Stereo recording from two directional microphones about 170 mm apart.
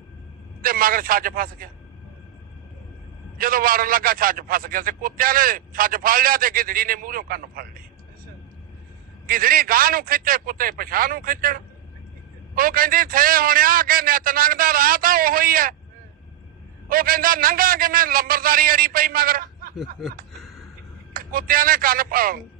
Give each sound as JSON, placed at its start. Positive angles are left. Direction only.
{"t": 0.6, "sound": "a man's voice", "side_deg": -55}
{"t": 3.3, "sound": "a man's voice", "side_deg": -55}
{"t": 9.2, "sound": "a man's voice", "side_deg": -55}
{"t": 16.9, "sound": "a man's voice", "side_deg": -55}
{"t": 21.1, "sound": "speech", "side_deg": -55}